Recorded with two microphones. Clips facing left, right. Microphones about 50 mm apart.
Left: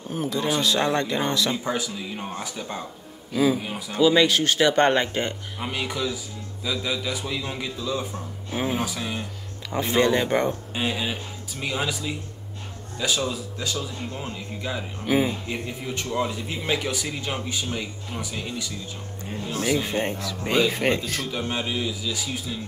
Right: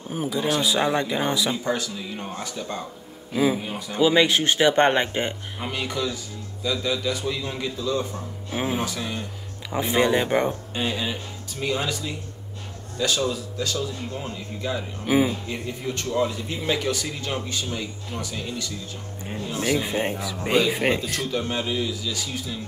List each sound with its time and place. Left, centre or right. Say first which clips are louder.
0.1 s speech: right 1 dB; centre
1.6 s a man's voice: right 1 dB; centre
3.3 s speech: even; right
5.6 s a man's voice: even; centre
9.7 s speech: even; centre
10.7 s a man's voice: even; centre
15.0 s speech: right 2 dB; centre
15.4 s a man's voice: right 1 dB; centre
19.6 s speech: even; centre
21.1 s a man's voice: right 2 dB; centre